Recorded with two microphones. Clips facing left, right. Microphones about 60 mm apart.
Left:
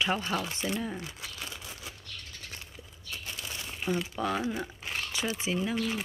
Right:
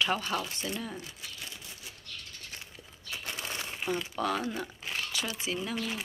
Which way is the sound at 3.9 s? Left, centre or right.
Centre.